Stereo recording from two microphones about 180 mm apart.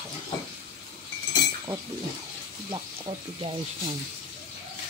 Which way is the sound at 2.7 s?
30° right (ahead or behind).